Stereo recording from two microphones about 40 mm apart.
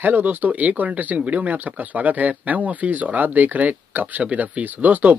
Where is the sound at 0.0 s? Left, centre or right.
Right.